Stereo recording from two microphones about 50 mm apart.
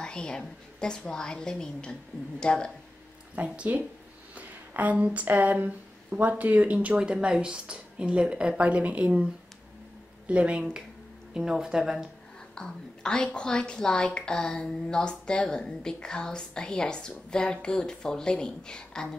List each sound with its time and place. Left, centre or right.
0.0 s a woman's voice: left
3.5 s a woman's voice: right; by 12.1 s centre
12.5 s a woman's voice: centre